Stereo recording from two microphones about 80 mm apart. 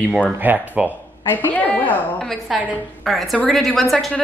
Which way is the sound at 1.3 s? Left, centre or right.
Left.